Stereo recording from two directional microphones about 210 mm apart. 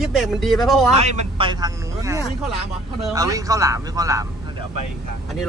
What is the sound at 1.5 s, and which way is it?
Speech, 15° right (ahead or behind).